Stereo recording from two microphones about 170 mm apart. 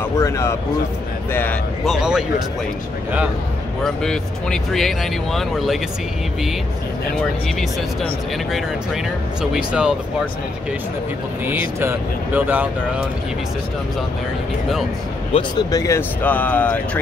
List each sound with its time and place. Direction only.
0.2 s speech: 15° left (ahead or behind)
1.9 s speech: 5° right (ahead or behind)
3.8 s speech: 5° left (ahead or behind)
8.5 s speech: centre (ahead or behind)
12.4 s speech: 10° right (ahead or behind)
15.3 s speech: 25° left (ahead or behind)
16.2 s speech: 10° left (ahead or behind)